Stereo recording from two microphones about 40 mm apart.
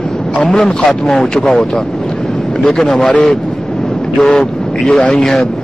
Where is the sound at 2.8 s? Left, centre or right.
Centre.